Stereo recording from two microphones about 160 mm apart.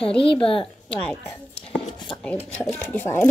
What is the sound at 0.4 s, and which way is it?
Speech, 35° left (ahead or behind).